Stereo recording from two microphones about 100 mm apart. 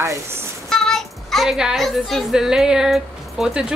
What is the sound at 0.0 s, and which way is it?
Speech, 30° right (ahead or behind).